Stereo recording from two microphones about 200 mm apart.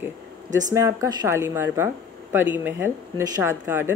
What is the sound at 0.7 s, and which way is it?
Speech, 15° right (ahead or behind).